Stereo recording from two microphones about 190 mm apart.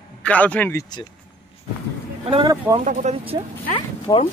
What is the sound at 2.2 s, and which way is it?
Speech, 30° right (ahead or behind).